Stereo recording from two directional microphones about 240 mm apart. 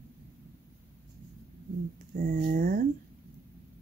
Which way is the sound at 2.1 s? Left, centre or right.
Right.